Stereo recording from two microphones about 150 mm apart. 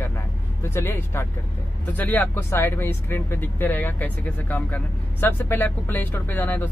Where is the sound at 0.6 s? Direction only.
15° left (ahead or behind).